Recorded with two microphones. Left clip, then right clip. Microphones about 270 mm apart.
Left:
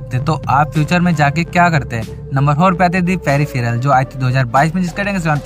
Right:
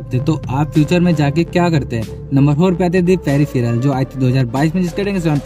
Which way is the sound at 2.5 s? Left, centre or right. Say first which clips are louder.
Left 3 dB; left.